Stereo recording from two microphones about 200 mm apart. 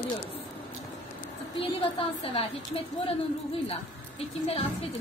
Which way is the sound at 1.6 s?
30° left (ahead or behind).